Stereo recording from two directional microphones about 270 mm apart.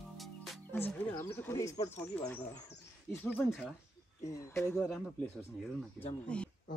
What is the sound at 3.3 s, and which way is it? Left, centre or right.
Speech, centre.